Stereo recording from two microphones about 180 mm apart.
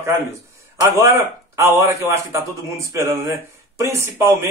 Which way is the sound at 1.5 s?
15° right (ahead or behind).